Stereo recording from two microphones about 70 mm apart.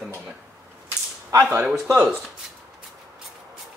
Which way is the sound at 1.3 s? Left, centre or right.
Right.